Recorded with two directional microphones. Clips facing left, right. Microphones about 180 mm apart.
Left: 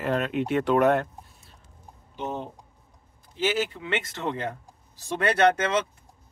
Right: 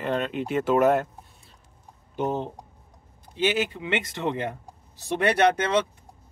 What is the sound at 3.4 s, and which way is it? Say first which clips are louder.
Speech: right 2 dB; 15° right (ahead or behind).